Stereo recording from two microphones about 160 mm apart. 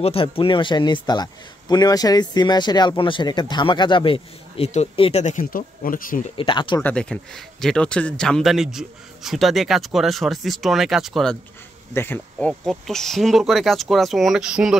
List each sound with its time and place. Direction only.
0.0 s a man's voice: 35° left (ahead or behind)
5.2 s speech: 55° left (ahead or behind)
6.3 s speech: 30° left (ahead or behind)
6.8 s speech: 10° left (ahead or behind)
11.9 s speech: 15° left (ahead or behind); by 14.8 s 5° right (ahead or behind)